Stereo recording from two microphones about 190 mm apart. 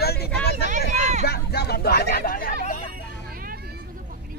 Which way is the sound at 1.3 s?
55° left (ahead or behind).